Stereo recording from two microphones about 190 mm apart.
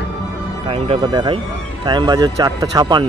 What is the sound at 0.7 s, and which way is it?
A man's voice, 25° right (ahead or behind).